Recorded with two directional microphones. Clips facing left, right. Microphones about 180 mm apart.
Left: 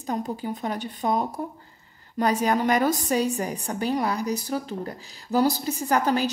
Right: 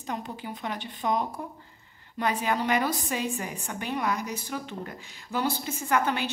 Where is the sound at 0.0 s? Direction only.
40° left (ahead or behind).